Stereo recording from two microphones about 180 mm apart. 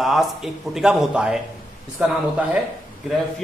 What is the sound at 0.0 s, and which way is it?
A man's voice, centre (ahead or behind).